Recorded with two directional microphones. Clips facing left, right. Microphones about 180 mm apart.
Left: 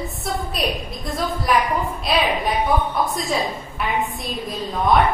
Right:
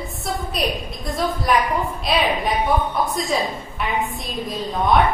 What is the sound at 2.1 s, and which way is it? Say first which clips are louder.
A woman's voice: even; centre (ahead or behind).